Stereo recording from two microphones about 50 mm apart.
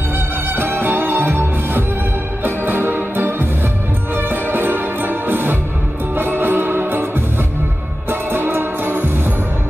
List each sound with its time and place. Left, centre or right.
0.6 s music: right